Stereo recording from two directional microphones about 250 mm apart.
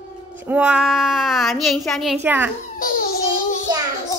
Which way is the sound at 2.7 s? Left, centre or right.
Left.